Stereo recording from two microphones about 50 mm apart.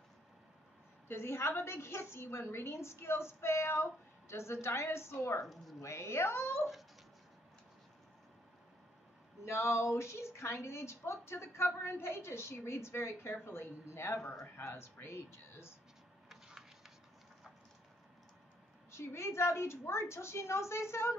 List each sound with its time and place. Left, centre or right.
1.0 s a woman's voice: left
5.4 s speech: centre
5.8 s a woman's voice: left
9.4 s a woman's voice: left
16.3 s a sound: centre
18.9 s a woman's voice: left